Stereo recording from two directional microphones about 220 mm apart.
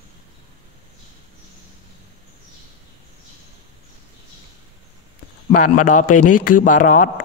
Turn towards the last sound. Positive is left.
turn(degrees=35)  # may be behind; listen again after turning